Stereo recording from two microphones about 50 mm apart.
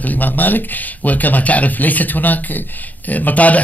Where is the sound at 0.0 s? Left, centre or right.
Left.